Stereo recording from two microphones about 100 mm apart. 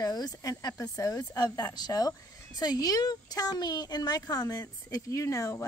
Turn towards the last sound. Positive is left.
turn(degrees=30)  # may be behind; listen again after turning